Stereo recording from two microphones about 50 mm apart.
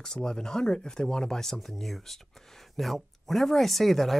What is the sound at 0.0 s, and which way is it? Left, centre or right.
Speech, centre.